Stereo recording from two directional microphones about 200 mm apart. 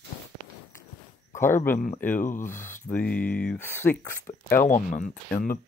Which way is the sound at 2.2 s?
40° left (ahead or behind).